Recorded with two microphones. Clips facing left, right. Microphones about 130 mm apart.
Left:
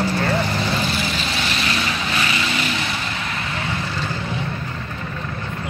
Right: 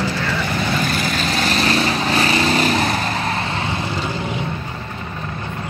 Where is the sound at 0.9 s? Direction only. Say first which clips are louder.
Right 3 dB; 45° right (ahead or behind).